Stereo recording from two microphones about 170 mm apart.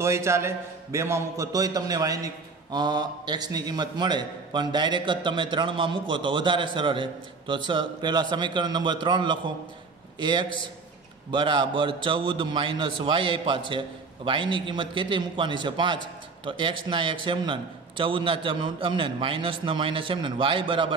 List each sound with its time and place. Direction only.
0.0 s a man's voice: 15° right (ahead or behind)